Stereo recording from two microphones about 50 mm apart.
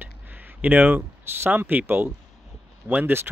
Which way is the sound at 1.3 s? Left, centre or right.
Right.